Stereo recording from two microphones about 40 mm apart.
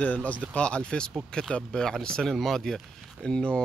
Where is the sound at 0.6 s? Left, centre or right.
Left.